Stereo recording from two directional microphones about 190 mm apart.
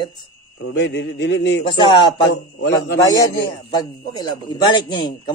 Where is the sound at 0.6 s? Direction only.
65° left (ahead or behind).